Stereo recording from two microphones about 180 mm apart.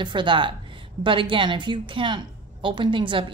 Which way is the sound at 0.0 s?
25° right (ahead or behind).